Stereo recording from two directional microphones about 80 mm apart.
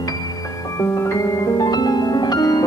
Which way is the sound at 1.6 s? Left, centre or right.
Left.